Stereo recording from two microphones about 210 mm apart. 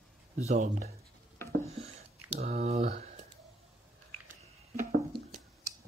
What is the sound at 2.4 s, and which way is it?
Speech, 35° right (ahead or behind).